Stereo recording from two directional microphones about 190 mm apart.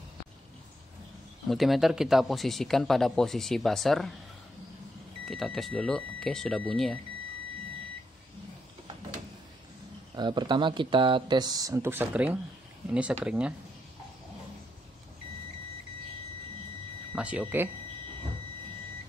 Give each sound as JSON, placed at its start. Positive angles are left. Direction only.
{"t": 1.5, "sound": "speech", "side_deg": 0}
{"t": 5.2, "sound": "speech", "side_deg": 0}
{"t": 10.1, "sound": "speech", "side_deg": -25}
{"t": 17.1, "sound": "speech", "side_deg": -5}